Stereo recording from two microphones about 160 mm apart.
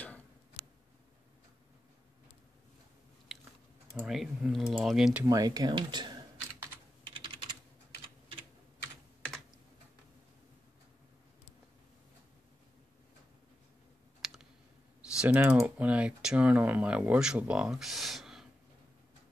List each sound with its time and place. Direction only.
4.0 s speech: 5° right (ahead or behind)
5.3 s speech: 25° right (ahead or behind)
14.2 s clicking: centre (ahead or behind)
15.0 s speech: 10° right (ahead or behind)